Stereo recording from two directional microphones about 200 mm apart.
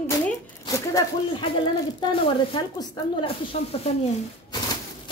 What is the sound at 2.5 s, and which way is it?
Speech, 20° left (ahead or behind).